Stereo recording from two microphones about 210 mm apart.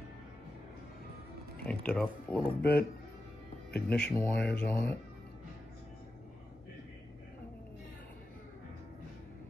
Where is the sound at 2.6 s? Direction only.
45° left (ahead or behind).